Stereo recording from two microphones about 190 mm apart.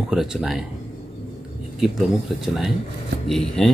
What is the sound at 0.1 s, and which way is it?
Speech, 5° right (ahead or behind).